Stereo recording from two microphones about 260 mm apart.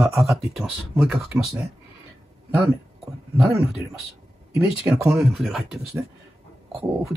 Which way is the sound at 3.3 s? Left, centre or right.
Centre.